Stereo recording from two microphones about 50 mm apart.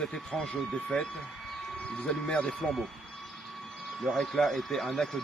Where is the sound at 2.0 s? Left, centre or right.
Centre.